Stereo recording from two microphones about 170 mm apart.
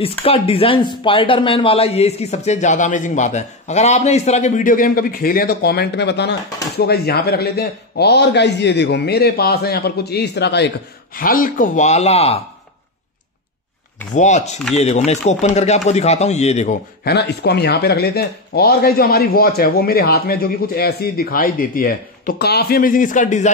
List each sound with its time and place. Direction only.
0.0 s speech: 35° left (ahead or behind); by 6.3 s 85° left
6.8 s a man's voice: 70° left (ahead or behind)
11.1 s speech: 55° left (ahead or behind); by 12.4 s 35° left (ahead or behind)
14.1 s speech: 45° left (ahead or behind)
17.0 s speech: 70° left (ahead or behind); by 23.5 s 45° left (ahead or behind)